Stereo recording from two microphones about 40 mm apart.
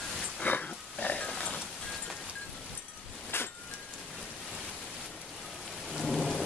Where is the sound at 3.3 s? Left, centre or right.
Left.